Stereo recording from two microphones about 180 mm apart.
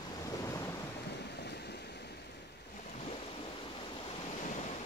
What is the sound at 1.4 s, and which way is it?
Waves, 65° left (ahead or behind).